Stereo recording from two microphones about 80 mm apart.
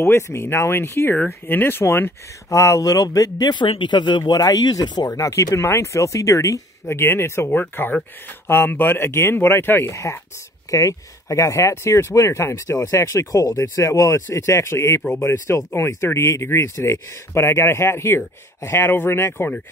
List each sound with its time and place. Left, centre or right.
0.0 s speech: left
2.5 s speech: left
4.2 s speech: left
5.1 s speech: left